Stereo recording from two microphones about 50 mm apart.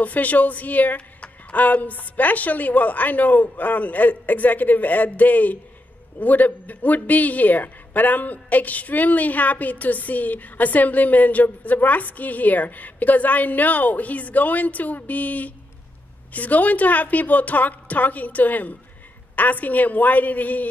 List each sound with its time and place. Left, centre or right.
0.0 s speech: left